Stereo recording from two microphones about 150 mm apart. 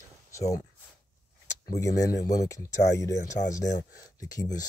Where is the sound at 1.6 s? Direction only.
20° left (ahead or behind).